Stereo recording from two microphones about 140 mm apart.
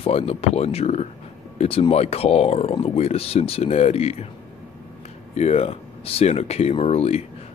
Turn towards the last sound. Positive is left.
turn(degrees=50)  # may be behind; listen again after turning